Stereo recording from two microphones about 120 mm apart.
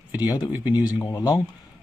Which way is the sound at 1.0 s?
30° left (ahead or behind).